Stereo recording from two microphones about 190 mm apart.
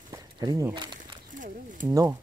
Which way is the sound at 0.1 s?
20° right (ahead or behind).